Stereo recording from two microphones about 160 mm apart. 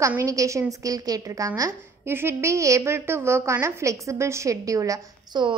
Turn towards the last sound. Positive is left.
turn(degrees=-25)  # may be behind; listen again after turning